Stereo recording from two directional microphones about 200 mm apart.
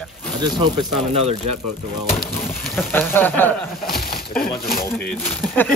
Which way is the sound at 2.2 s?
5° left (ahead or behind).